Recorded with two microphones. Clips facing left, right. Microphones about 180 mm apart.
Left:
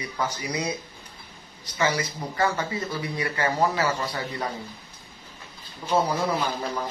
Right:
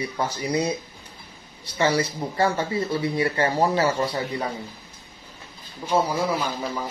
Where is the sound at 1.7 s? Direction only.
30° right (ahead or behind).